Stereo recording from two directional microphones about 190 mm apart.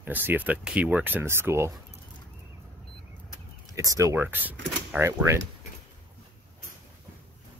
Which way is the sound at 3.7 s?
15° right (ahead or behind).